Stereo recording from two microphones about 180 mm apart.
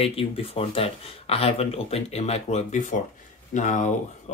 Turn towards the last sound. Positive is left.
turn(degrees=40)  # may be behind; listen again after turning